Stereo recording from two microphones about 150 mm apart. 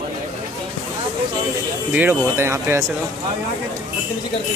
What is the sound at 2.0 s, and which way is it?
Speech, 15° right (ahead or behind).